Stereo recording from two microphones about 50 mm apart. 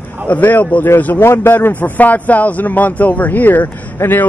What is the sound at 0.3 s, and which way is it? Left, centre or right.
Speech, left.